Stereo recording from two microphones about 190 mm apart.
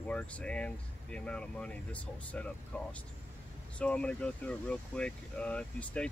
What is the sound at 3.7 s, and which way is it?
Speech, 5° left (ahead or behind).